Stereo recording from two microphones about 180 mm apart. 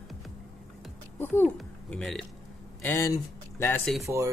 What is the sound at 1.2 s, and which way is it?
Speech, 10° left (ahead or behind).